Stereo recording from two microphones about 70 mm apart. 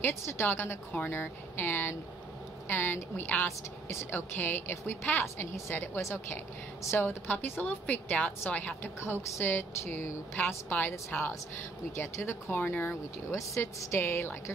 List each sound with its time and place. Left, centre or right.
0.0 s a woman's voice: left